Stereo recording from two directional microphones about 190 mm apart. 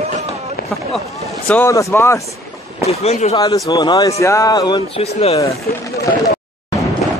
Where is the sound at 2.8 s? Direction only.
35° left (ahead or behind).